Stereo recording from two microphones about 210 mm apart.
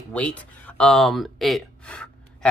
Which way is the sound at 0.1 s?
5° left (ahead or behind).